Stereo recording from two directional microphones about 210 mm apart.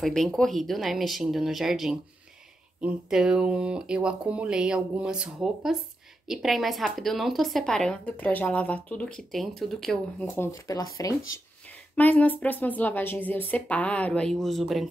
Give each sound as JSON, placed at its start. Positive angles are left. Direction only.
{"t": 0.0, "sound": "a woman's voice", "side_deg": 0}
{"t": 10.2, "sound": "speech", "side_deg": 10}